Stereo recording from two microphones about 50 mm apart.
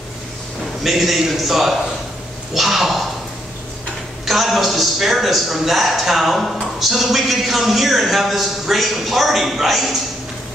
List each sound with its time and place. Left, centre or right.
0.8 s a man's voice: centre
4.3 s a man's voice: centre